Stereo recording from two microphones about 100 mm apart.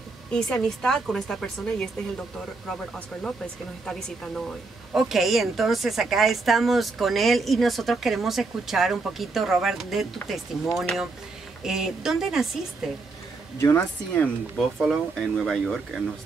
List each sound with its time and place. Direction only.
0.3 s a woman's voice: 10° left (ahead or behind)
3.8 s a woman's voice: 5° left (ahead or behind)
13.6 s speech: 25° left (ahead or behind)
14.8 s a woman's voice: 5° left (ahead or behind)